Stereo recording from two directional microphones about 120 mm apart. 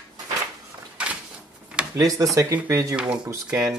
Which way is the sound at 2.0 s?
30° right (ahead or behind).